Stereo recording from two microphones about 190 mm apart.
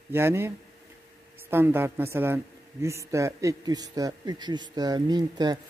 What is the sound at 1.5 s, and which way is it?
A man's voice, 10° right (ahead or behind).